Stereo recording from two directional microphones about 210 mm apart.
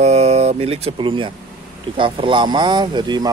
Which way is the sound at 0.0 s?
30° right (ahead or behind).